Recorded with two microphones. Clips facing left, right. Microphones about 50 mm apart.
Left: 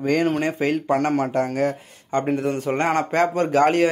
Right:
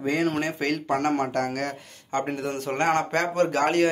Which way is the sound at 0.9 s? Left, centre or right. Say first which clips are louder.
Left 2 dB; centre.